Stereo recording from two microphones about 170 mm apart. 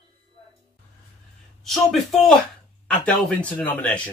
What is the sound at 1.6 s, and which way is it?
Speech, centre (ahead or behind).